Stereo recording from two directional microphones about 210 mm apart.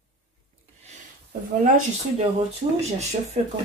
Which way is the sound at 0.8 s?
35° right (ahead or behind).